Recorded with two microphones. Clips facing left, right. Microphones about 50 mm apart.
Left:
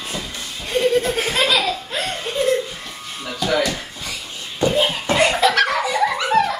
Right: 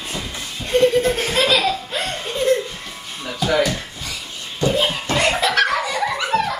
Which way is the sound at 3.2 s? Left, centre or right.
Centre.